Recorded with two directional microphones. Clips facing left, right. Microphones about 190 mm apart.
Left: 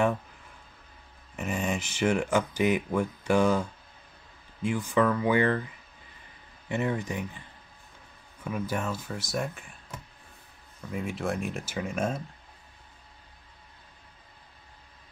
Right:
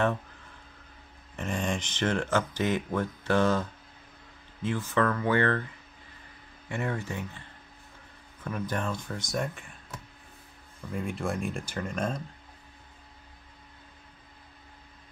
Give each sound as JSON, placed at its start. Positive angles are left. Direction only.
{"t": 1.3, "sound": "speech", "side_deg": 5}
{"t": 6.7, "sound": "speech", "side_deg": 20}
{"t": 8.5, "sound": "speech", "side_deg": 10}
{"t": 10.9, "sound": "speech", "side_deg": 0}